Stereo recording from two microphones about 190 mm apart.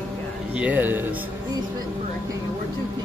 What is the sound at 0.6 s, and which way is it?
Speech, 10° right (ahead or behind).